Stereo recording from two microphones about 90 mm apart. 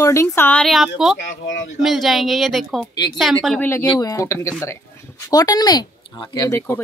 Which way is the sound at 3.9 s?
40° left (ahead or behind).